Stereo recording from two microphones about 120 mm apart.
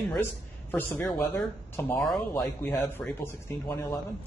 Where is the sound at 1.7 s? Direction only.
15° left (ahead or behind).